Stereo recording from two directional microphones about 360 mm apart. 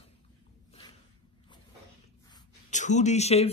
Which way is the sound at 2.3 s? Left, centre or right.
Centre.